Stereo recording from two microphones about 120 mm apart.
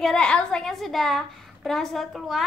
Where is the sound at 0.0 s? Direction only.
5° left (ahead or behind).